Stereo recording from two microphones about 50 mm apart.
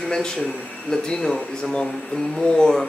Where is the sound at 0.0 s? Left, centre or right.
Centre.